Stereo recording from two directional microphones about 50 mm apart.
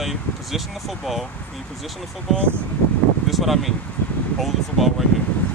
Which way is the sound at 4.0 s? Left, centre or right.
Left.